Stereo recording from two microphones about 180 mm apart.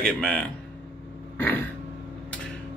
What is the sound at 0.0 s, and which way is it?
Speech, 5° left (ahead or behind).